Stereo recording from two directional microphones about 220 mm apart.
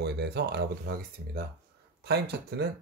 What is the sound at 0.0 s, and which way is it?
Speech, 50° right (ahead or behind).